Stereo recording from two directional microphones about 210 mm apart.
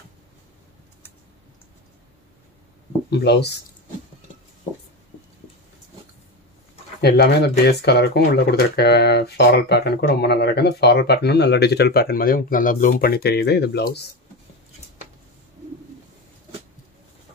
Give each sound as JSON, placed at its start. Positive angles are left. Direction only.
{"t": 3.1, "sound": "speech", "side_deg": 50}
{"t": 7.0, "sound": "speech", "side_deg": 50}